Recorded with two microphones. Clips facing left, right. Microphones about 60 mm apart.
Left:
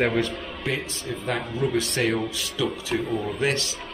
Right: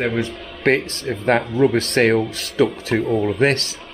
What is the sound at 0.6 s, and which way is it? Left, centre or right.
Speech, right.